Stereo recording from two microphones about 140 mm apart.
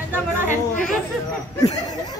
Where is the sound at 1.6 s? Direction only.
25° left (ahead or behind).